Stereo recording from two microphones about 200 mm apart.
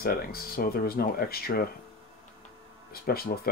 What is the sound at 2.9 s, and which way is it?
Speech, 50° left (ahead or behind).